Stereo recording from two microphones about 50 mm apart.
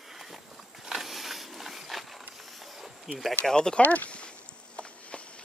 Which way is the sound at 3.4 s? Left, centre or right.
Centre.